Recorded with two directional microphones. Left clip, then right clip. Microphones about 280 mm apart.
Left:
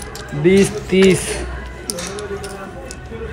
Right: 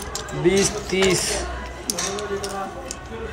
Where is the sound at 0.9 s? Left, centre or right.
Centre.